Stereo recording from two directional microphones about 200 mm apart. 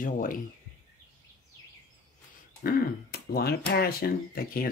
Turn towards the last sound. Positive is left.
turn(degrees=50)  # may be behind; listen again after turning